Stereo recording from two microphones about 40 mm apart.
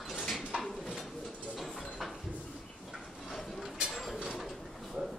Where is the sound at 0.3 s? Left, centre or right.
Centre.